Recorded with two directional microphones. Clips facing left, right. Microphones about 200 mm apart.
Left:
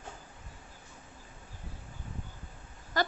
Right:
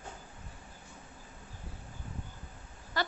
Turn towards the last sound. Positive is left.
turn(degrees=45)  # may be behind; listen again after turning